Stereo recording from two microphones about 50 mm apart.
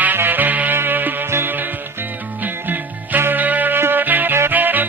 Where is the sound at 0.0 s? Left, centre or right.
Right.